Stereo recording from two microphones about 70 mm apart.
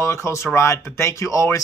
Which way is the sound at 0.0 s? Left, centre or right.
Left.